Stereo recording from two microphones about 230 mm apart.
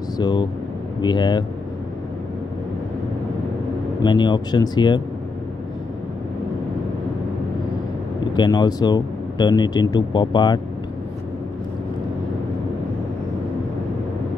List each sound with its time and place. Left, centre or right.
0.2 s speech: centre
4.0 s speech: centre
8.4 s speech: centre